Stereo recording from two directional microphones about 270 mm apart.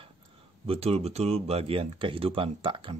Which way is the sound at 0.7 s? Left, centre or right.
Right.